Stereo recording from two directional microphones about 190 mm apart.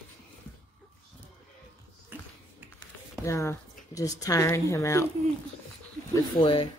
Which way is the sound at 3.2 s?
15° left (ahead or behind).